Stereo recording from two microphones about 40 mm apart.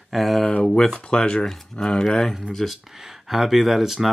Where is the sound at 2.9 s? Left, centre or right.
Centre.